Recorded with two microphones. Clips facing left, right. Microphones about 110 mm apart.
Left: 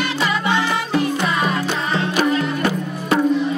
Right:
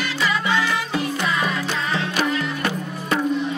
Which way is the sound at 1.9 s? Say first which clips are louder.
Left 5 dB; 30° left (ahead or behind).